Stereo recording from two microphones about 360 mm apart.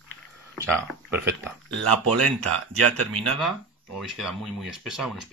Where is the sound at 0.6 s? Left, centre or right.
Centre.